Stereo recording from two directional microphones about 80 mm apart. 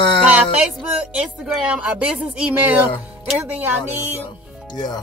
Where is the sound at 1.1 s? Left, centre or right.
Centre.